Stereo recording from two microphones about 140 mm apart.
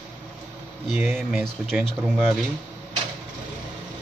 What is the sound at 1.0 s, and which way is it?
Speech, 15° right (ahead or behind).